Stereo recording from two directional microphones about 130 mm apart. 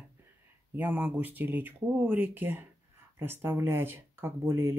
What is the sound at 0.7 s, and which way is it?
Speech, 15° right (ahead or behind).